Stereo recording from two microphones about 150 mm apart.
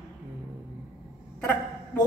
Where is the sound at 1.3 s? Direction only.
10° left (ahead or behind).